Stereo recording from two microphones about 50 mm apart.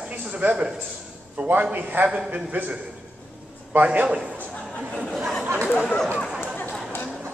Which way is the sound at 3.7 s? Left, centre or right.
Right.